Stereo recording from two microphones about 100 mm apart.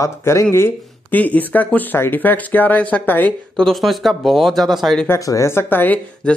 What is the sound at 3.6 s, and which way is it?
Speech, centre (ahead or behind).